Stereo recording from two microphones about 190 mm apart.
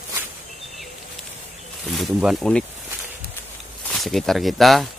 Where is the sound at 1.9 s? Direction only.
Centre (ahead or behind).